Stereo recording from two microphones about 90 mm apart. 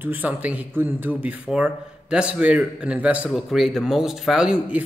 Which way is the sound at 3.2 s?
Centre (ahead or behind).